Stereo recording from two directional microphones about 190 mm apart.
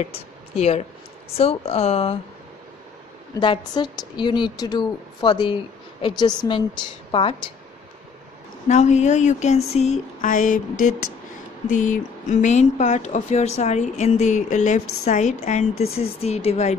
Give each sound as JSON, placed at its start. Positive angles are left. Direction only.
{"t": 0.0, "sound": "speech", "side_deg": 35}
{"t": 3.3, "sound": "a woman's voice", "side_deg": 25}
{"t": 8.6, "sound": "speech", "side_deg": 40}
{"t": 9.8, "sound": "a sound", "side_deg": 40}
{"t": 11.7, "sound": "speech", "side_deg": 40}